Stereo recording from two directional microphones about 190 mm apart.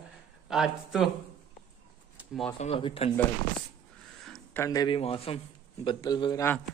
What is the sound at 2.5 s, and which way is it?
Speech, 30° left (ahead or behind).